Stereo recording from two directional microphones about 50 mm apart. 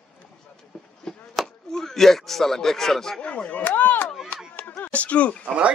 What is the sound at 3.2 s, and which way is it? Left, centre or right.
Speech, left.